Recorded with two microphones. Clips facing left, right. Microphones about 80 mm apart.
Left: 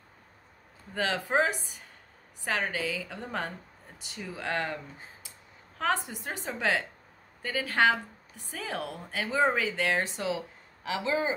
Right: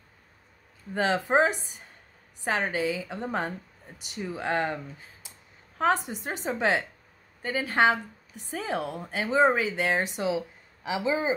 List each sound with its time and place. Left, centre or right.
0.9 s speech: right
6.0 s speech: right